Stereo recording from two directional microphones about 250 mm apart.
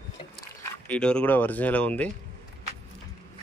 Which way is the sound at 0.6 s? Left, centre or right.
Centre.